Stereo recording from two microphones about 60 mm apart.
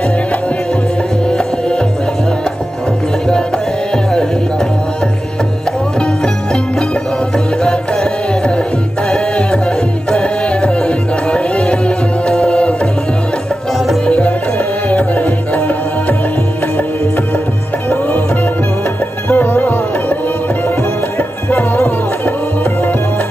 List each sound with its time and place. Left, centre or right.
3.9 s music: centre
7.3 s music: centre
10.1 s music: centre
14.0 s music: centre
19.2 s music: left
21.2 s music: left